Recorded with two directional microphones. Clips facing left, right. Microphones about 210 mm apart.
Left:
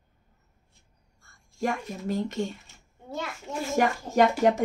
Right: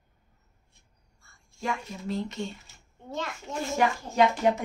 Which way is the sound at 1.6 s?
45° left (ahead or behind).